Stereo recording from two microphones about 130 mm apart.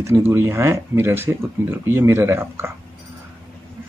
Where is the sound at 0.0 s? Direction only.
20° right (ahead or behind).